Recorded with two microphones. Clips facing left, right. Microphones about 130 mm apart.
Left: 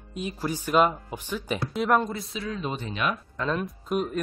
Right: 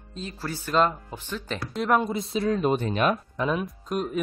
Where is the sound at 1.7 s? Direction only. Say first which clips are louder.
Even; centre (ahead or behind).